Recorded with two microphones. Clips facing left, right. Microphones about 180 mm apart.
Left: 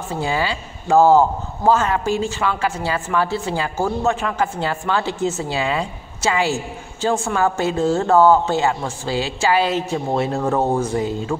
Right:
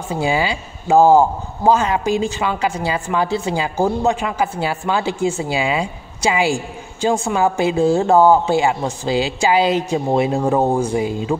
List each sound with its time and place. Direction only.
0.1 s a man's voice: 15° right (ahead or behind)